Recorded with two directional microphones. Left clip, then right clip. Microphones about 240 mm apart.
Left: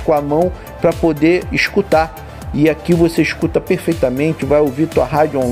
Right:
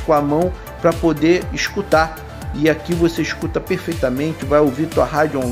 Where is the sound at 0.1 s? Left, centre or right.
Left.